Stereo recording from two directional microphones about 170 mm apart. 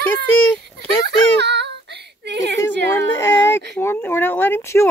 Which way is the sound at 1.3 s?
80° right.